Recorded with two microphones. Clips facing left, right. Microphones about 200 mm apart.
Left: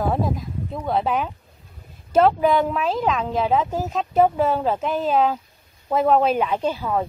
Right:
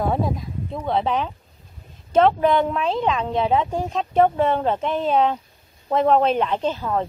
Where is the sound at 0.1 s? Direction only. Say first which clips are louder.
Even; centre (ahead or behind).